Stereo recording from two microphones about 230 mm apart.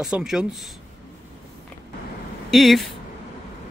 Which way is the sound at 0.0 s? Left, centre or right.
Centre.